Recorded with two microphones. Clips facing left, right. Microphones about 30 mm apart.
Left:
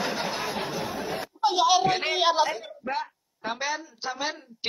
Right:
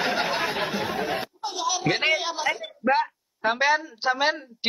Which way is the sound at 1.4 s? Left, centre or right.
Left.